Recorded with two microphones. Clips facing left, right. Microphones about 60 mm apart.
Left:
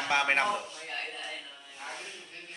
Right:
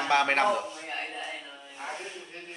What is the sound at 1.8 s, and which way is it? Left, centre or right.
Speech, centre.